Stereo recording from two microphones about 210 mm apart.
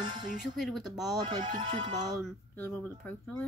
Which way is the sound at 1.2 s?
20° right (ahead or behind).